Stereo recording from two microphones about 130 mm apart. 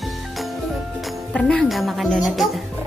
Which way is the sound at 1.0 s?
5° left (ahead or behind).